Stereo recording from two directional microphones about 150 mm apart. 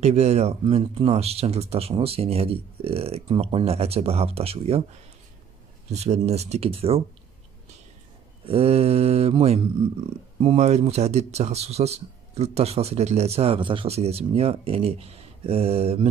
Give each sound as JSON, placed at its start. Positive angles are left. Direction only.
{"t": 0.0, "sound": "speech", "side_deg": -45}
{"t": 5.9, "sound": "speech", "side_deg": -45}
{"t": 8.5, "sound": "speech", "side_deg": -40}